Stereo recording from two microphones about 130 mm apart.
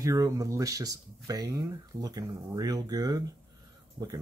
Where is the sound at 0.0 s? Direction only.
25° right (ahead or behind).